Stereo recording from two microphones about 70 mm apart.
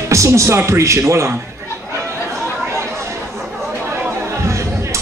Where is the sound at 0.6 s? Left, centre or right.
Right.